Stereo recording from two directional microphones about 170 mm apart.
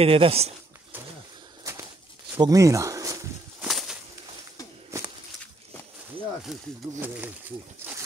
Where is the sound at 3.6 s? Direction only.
5° right (ahead or behind).